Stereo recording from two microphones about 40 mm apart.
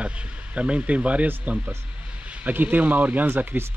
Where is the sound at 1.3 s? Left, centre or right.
Right.